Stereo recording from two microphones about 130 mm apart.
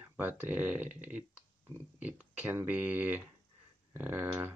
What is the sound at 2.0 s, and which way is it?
Speech, 10° right (ahead or behind).